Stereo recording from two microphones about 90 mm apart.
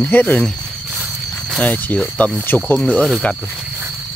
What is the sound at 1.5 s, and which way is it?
Speech, 15° left (ahead or behind).